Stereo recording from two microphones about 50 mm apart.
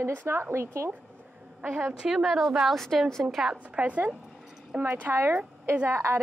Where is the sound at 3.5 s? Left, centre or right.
Right.